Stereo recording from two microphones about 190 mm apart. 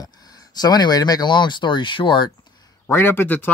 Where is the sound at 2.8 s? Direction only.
10° left (ahead or behind).